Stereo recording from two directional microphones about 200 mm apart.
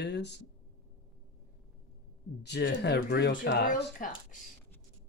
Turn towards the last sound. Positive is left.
turn(degrees=40)  # may be behind; listen again after turning